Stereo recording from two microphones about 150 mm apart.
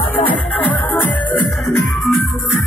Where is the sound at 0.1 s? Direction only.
10° left (ahead or behind).